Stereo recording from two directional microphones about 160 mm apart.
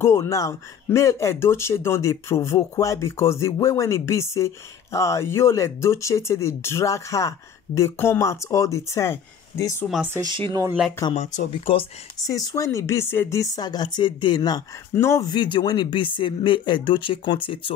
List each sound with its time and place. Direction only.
0.0 s speech: 20° left (ahead or behind)
10.1 s speech: 30° right (ahead or behind)
11.5 s speech: 35° left (ahead or behind)
12.3 s speech: 20° left (ahead or behind)